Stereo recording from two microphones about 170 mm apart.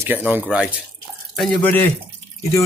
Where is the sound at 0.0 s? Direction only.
10° right (ahead or behind).